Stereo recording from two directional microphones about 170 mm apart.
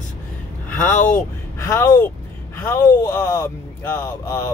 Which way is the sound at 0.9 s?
50° left (ahead or behind).